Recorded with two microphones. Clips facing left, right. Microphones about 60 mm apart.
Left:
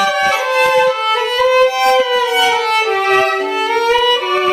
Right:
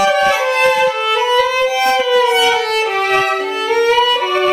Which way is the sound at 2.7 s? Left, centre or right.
Left.